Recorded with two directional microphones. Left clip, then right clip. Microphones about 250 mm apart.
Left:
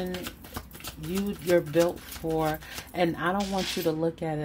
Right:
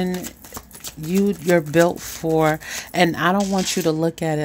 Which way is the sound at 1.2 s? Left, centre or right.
Right.